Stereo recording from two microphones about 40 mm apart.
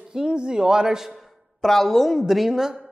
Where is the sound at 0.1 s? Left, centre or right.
Centre.